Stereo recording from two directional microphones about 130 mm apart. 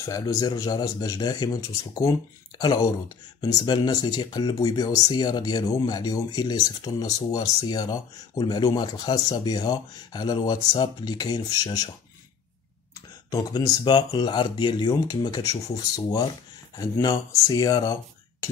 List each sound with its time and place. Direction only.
0.0 s speech: 25° left (ahead or behind)
13.3 s speech: 30° left (ahead or behind)